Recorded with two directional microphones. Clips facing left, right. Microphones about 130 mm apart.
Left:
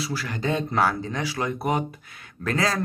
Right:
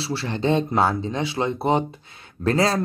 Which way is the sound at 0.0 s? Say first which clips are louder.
Right 4 dB; 30° right (ahead or behind).